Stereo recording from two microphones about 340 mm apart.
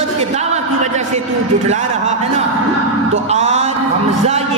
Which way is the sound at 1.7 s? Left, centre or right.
Right.